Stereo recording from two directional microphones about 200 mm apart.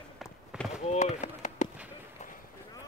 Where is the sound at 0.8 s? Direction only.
35° left (ahead or behind).